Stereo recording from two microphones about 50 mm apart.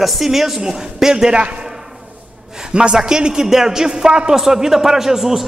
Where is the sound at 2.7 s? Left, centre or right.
Centre.